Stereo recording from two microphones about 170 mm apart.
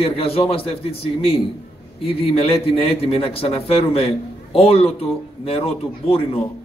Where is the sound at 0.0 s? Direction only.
35° left (ahead or behind).